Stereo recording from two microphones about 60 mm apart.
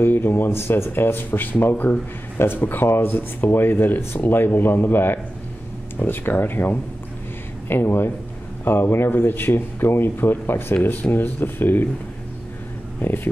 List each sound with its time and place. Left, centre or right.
0.0 s speech: left
13.0 s speech: left